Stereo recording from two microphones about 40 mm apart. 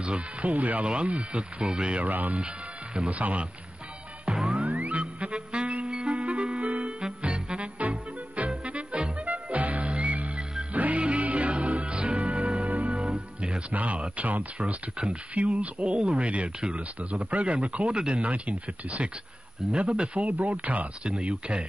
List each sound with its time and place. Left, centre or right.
0.0 s speech: right
1.6 s speech: right
2.0 s speech: right
2.3 s speech: right
3.1 s speech: right
4.6 s music: right
7.0 s music: right
14.2 s speech: right
17.9 s speech: right
18.2 s speech: right